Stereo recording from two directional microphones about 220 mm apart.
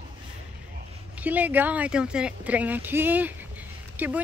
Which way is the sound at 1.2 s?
5° right (ahead or behind).